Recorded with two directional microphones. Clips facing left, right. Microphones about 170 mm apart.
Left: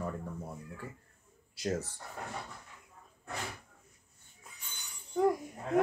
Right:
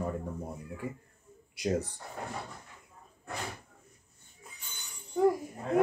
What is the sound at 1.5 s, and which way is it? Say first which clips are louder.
Speech: right 4 dB; 15° right (ahead or behind).